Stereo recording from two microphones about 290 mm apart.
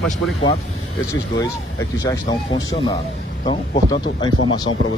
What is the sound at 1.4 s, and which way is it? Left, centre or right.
Speech, centre.